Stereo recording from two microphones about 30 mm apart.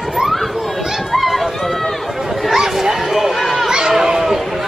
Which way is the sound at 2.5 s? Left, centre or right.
Centre.